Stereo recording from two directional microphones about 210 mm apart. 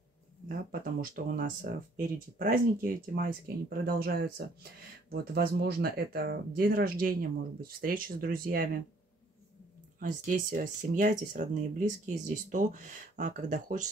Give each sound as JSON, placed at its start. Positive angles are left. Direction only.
{"t": 0.5, "sound": "speech", "side_deg": -40}
{"t": 9.9, "sound": "speech", "side_deg": -40}